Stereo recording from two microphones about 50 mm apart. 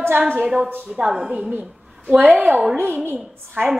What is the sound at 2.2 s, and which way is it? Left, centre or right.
Speech, right.